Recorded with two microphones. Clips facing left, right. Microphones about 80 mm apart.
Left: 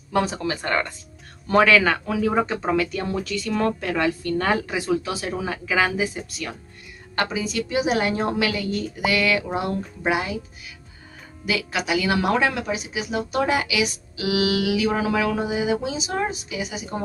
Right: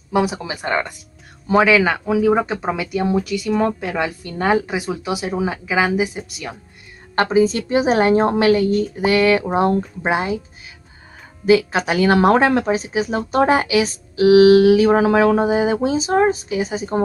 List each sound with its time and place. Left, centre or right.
0.1 s speech: centre
7.2 s speech: right
11.4 s speech: right